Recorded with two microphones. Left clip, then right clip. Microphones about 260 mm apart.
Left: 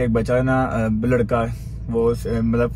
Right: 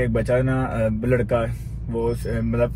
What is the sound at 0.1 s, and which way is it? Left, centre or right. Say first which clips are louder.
Speech: left 2 dB; centre.